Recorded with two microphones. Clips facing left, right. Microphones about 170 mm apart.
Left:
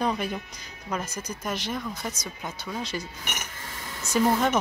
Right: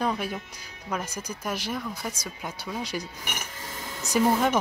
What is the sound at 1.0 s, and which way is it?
Speech, 10° right (ahead or behind).